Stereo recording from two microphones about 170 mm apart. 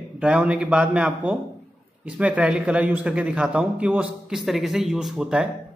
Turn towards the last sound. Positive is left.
turn(degrees=-5)  # may be behind; listen again after turning